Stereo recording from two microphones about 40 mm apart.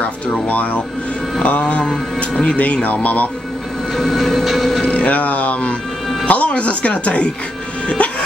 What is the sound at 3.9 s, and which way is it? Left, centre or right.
Train, centre.